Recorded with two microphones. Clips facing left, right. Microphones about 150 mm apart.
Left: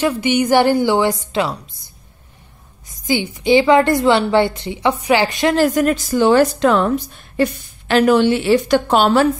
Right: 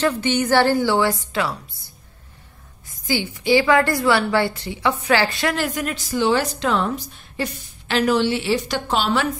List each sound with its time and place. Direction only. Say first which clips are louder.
0.0 s a woman's voice: left 3 dB; 10° left (ahead or behind)
3.1 s a woman's voice: left 4 dB; 20° left (ahead or behind)
5.6 s a woman's voice: left 10 dB; 45° left (ahead or behind)
7.9 s a woman's voice: left 6 dB; 55° left (ahead or behind)